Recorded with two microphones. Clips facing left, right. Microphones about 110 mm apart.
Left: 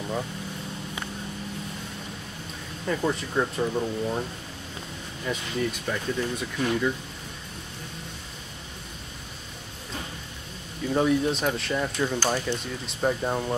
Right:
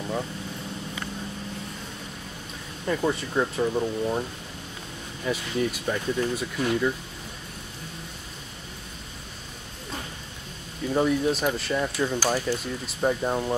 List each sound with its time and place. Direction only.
2.9 s speech: centre (ahead or behind)
5.2 s speech: 5° right (ahead or behind)
10.9 s speech: centre (ahead or behind)